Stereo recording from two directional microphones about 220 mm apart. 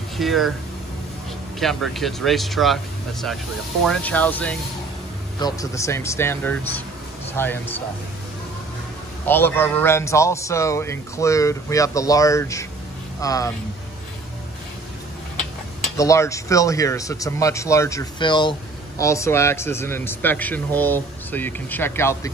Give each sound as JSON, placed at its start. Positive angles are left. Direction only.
{"t": 0.2, "sound": "speech", "side_deg": 0}
{"t": 1.6, "sound": "speech", "side_deg": 0}
{"t": 9.2, "sound": "speech", "side_deg": 10}
{"t": 16.0, "sound": "speech", "side_deg": 15}